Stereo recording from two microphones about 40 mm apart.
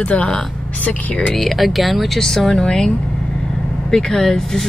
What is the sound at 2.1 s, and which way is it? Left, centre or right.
Speech, centre.